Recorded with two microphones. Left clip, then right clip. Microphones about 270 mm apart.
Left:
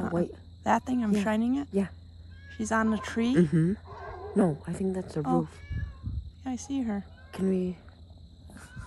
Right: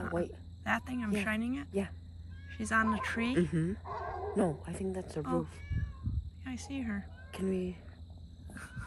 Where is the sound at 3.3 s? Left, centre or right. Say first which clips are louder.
Left 7 dB; left.